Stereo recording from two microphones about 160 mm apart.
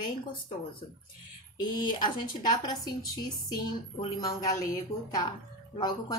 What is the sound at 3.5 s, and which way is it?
Speech, 25° left (ahead or behind).